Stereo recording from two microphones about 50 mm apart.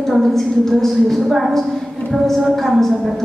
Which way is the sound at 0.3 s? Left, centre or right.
Centre.